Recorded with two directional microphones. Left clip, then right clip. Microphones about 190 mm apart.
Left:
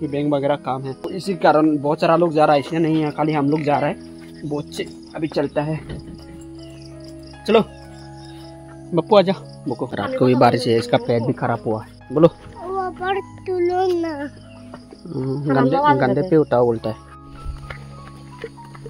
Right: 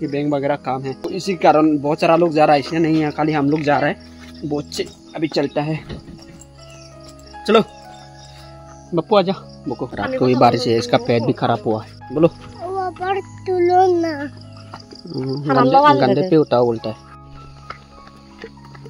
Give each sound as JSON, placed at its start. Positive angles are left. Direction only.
{"t": 0.0, "sound": "speech", "side_deg": -5}
{"t": 8.9, "sound": "speech", "side_deg": 10}
{"t": 12.1, "sound": "music", "side_deg": 10}
{"t": 13.5, "sound": "speech", "side_deg": -20}
{"t": 15.4, "sound": "speech", "side_deg": -30}
{"t": 16.2, "sound": "speech", "side_deg": -10}